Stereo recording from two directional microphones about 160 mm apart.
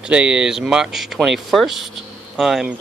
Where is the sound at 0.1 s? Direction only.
5° right (ahead or behind).